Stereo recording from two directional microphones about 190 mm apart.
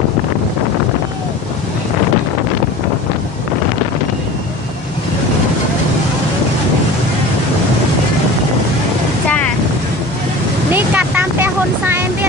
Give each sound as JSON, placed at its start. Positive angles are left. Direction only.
{"t": 10.7, "sound": "vehicle", "side_deg": -10}